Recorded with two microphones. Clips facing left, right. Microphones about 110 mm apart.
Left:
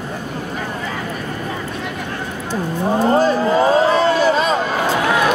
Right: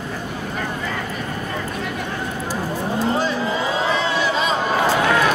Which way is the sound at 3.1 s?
45° left (ahead or behind).